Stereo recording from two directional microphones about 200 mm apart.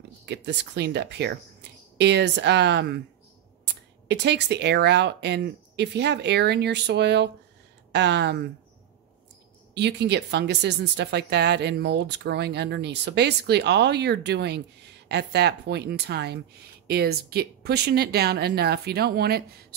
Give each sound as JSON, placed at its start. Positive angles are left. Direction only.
{"t": 0.2, "sound": "speech", "side_deg": -60}
{"t": 4.1, "sound": "speech", "side_deg": -60}
{"t": 9.8, "sound": "speech", "side_deg": -60}